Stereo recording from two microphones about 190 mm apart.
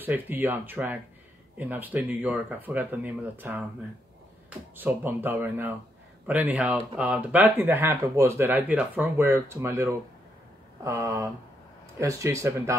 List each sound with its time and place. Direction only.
0.0 s speech: 10° right (ahead or behind)
4.7 s speech: 10° right (ahead or behind)